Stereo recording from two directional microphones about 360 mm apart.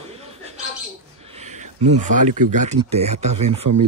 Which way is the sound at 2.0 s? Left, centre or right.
Centre.